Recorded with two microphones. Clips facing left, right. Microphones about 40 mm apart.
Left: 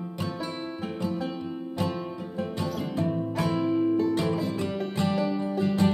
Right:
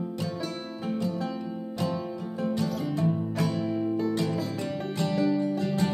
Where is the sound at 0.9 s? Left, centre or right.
Left.